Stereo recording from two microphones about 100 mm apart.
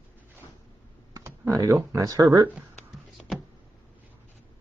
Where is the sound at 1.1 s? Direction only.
30° right (ahead or behind).